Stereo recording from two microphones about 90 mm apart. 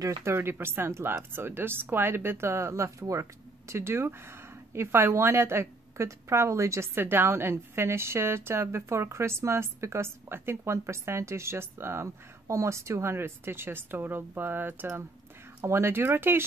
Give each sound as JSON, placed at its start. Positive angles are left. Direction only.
{"t": 0.0, "sound": "a woman's voice", "side_deg": -30}